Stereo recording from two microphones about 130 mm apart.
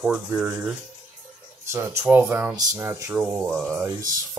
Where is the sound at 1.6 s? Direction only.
20° right (ahead or behind).